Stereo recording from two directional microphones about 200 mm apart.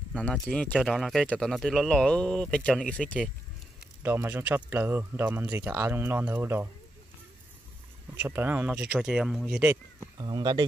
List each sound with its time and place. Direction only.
0.1 s speech: 5° left (ahead or behind)
4.0 s speech: 10° right (ahead or behind)
8.2 s speech: 10° right (ahead or behind)
10.1 s speech: 20° right (ahead or behind)